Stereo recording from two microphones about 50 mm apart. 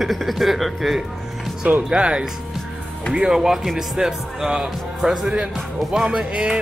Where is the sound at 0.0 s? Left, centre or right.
Centre.